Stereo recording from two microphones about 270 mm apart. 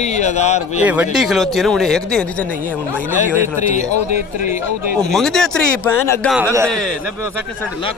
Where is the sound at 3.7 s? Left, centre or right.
Left.